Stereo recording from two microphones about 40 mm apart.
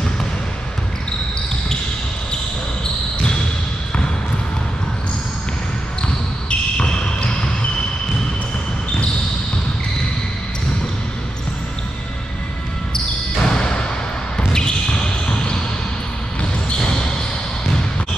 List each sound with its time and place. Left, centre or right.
6.8 s basketball bounce: left
13.4 s a sound: centre
14.5 s basketball bounce: centre